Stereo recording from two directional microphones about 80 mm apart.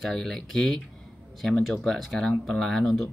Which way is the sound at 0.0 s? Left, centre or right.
Centre.